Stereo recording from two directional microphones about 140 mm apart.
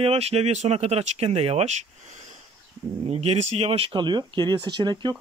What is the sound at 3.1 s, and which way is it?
Speech, 50° right (ahead or behind).